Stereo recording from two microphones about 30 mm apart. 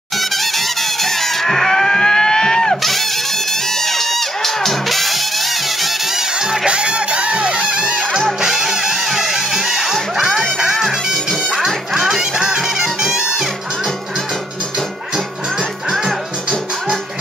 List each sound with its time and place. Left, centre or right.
0.2 s music: centre; by 2.8 s left
2.8 s music: centre
6.1 s music: centre
6.6 s music: right
8.4 s music: centre